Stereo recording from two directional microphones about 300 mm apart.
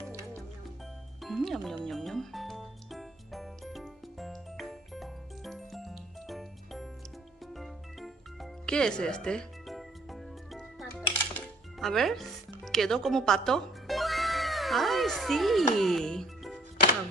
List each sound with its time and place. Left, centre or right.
1.2 s music: centre
12.6 s speech: centre